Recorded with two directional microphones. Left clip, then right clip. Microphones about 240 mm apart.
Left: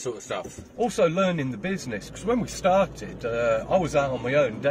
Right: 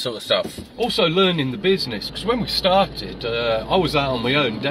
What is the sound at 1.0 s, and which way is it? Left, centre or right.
Speech, centre.